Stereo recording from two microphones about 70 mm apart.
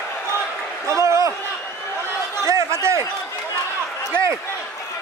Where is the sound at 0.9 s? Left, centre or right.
Right.